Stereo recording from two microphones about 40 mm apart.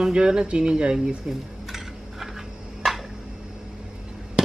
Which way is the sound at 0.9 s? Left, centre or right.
Centre.